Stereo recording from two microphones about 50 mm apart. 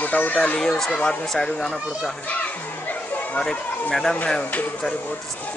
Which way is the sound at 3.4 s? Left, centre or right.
Centre.